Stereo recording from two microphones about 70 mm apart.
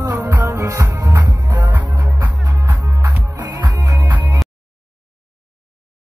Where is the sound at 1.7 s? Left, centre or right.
Right.